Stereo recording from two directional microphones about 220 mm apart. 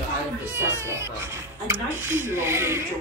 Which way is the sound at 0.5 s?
10° right (ahead or behind).